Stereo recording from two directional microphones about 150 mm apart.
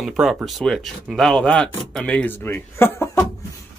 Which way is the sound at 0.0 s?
Centre (ahead or behind).